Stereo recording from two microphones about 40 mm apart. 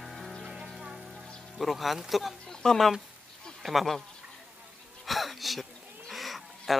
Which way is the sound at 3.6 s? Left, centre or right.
Centre.